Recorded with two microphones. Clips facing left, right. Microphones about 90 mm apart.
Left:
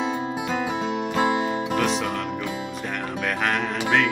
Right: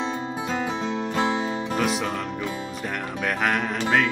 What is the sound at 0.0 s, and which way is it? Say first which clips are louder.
Music: left 2 dB; 10° left (ahead or behind).